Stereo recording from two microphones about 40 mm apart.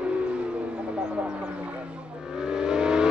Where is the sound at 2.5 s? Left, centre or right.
Centre.